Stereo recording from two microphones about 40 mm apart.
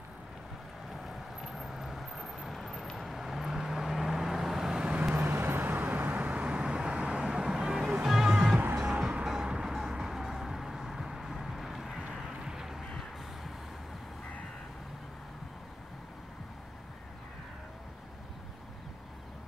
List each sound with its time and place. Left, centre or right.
1.0 s vehicle: centre
5.1 s vehicle: right
7.2 s vehicle: centre
8.0 s music: centre
8.5 s music: right
8.8 s music: right; by 12.0 s centre
12.4 s music: centre